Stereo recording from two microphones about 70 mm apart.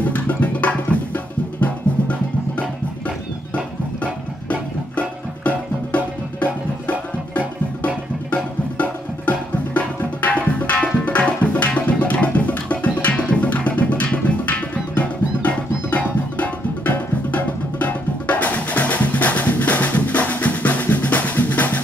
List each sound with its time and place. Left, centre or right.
0.0 s music: left
4.0 s music: centre
9.8 s tabla: centre